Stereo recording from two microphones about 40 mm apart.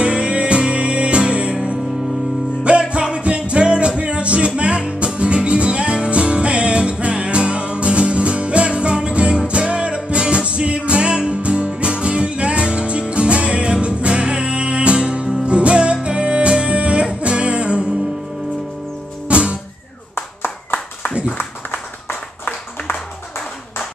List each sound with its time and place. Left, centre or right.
0.0 s music: right
2.9 s music: right
19.2 s music: right
20.2 s clapping: left